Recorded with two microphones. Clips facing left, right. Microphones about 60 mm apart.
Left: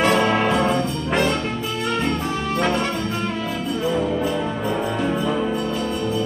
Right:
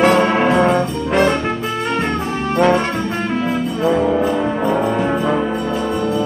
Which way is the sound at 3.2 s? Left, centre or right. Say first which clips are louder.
Right 6 dB; right.